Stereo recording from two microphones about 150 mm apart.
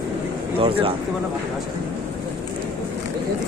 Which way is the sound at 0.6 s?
40° right (ahead or behind).